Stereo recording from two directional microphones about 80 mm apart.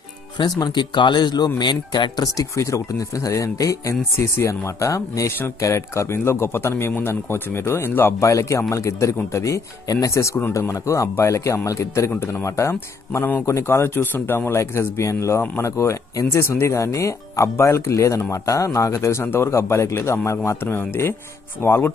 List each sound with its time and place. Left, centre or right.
0.6 s speech: left
2.2 s speech: left